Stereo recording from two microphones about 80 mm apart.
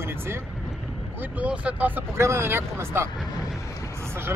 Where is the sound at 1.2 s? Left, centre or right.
Centre.